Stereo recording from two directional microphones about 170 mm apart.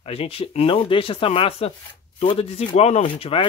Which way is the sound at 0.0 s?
35° left (ahead or behind).